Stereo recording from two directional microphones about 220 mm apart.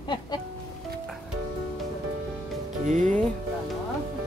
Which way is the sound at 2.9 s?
35° right (ahead or behind).